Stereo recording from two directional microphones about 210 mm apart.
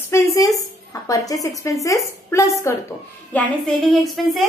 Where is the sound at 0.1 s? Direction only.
15° left (ahead or behind).